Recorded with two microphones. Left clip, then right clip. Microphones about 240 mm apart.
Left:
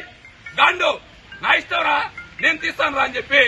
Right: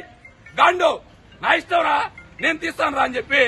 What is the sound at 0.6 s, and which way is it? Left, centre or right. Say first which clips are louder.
A man's voice: even; centre.